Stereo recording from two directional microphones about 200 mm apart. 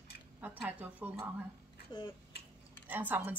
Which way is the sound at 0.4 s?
5° right (ahead or behind).